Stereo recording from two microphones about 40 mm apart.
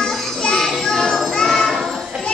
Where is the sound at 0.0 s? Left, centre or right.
Centre.